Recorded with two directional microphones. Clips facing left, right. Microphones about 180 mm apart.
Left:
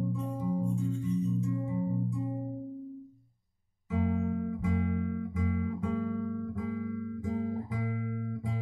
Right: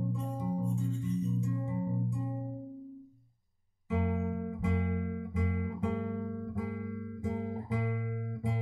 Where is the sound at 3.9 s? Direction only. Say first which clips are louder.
Left 2 dB; 25° right (ahead or behind).